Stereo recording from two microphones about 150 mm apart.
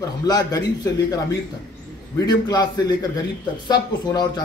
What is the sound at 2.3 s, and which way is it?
Speech, 25° left (ahead or behind).